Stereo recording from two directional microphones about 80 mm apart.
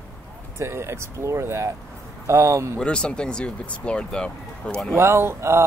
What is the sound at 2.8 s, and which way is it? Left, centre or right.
Speech, centre.